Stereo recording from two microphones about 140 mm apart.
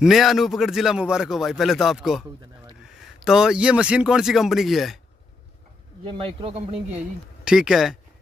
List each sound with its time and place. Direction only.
0.0 s a man's voice: centre (ahead or behind)
6.0 s speech: 40° right (ahead or behind)
7.4 s a man's voice: 5° right (ahead or behind)